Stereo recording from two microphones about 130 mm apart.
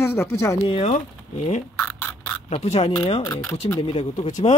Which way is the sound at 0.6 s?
55° left (ahead or behind).